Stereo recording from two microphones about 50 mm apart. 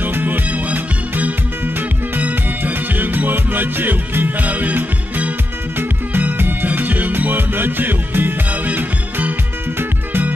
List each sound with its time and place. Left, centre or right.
0.0 s music: right
0.5 s music: right
8.5 s music: right